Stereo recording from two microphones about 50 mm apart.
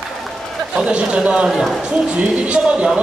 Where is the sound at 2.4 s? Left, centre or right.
Centre.